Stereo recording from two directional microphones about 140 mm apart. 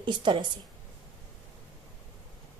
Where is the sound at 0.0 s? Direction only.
35° right (ahead or behind).